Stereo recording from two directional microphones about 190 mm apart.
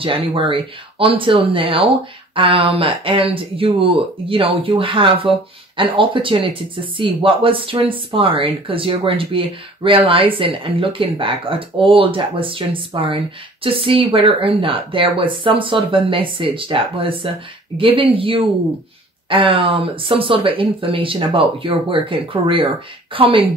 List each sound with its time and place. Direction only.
0.0 s speech: 30° right (ahead or behind)